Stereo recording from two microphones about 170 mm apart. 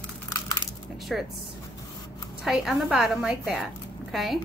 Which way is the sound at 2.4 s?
Centre (ahead or behind).